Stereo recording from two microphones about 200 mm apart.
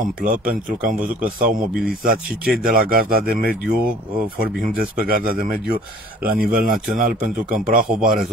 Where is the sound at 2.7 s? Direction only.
45° right (ahead or behind).